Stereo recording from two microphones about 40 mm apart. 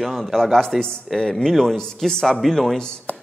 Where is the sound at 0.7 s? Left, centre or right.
Centre.